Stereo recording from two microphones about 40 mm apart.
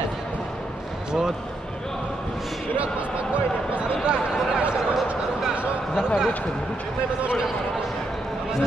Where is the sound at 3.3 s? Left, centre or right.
Right.